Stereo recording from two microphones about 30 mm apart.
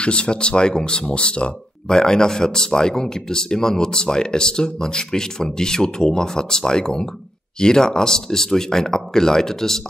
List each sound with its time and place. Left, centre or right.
0.0 s speech: left
1.9 s speech: left